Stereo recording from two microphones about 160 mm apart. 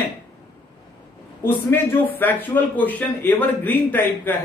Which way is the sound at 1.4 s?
15° left (ahead or behind).